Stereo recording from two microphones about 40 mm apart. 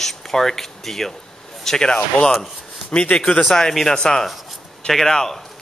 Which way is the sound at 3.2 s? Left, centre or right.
Left.